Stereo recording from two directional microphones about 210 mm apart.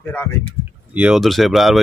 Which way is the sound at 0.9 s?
5° right (ahead or behind).